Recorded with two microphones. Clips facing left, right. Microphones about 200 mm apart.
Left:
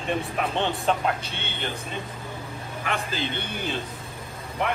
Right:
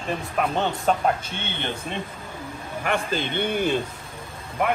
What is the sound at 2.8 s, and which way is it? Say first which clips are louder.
Speech: right 4 dB; 50° right (ahead or behind).